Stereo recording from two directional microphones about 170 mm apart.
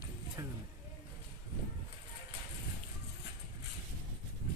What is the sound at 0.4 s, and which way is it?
Music, 15° right (ahead or behind).